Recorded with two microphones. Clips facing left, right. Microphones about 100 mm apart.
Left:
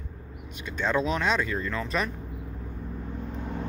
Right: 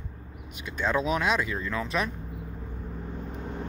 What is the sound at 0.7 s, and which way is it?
Speech, 5° right (ahead or behind).